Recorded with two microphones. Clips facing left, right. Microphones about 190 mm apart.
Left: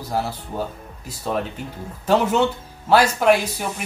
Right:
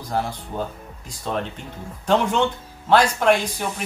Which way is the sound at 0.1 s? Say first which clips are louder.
Even; 5° left (ahead or behind).